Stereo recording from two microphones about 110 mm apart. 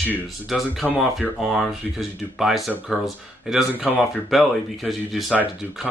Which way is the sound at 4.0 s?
Centre (ahead or behind).